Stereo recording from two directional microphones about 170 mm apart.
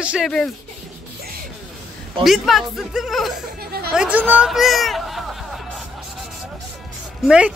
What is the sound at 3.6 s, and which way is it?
Chatter, 65° right (ahead or behind).